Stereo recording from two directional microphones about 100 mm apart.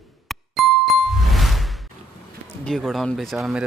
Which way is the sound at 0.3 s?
Centre (ahead or behind).